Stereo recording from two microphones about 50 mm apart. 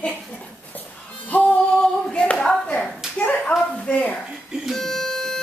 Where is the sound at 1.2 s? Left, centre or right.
Left.